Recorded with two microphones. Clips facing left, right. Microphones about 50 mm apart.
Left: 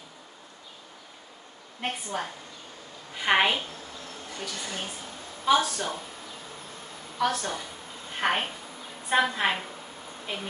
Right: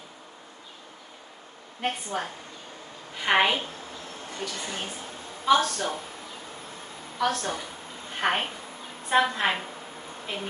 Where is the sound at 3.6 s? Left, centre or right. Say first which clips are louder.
Right 2 dB; right.